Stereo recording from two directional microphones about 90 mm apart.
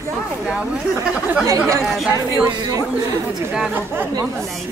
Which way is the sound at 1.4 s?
35° right (ahead or behind).